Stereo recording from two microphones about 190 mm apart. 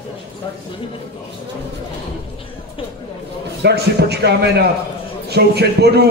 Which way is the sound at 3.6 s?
60° right (ahead or behind).